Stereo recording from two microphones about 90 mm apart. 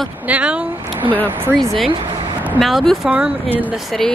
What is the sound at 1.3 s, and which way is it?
Speech, 25° right (ahead or behind).